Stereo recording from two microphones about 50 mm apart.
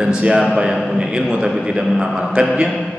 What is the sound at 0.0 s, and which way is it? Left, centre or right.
A man's voice, right.